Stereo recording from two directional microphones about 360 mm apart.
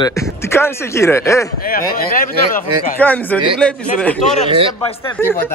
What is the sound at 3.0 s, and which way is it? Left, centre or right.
Speech, centre.